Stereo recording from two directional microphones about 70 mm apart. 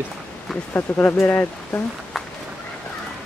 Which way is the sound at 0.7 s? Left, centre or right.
Left.